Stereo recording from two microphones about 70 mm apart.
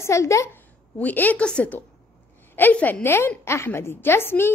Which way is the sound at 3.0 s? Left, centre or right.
Left.